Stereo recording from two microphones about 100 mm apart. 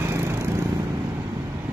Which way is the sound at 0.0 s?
25° right (ahead or behind).